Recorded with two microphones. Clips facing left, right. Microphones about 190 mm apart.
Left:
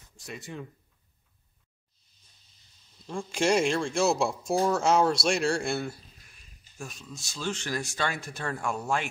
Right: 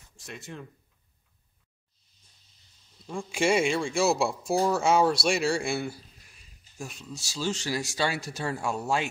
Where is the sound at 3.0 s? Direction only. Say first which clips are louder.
Even; 5° right (ahead or behind).